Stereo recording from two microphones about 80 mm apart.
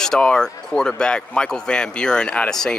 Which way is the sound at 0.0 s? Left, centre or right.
Centre.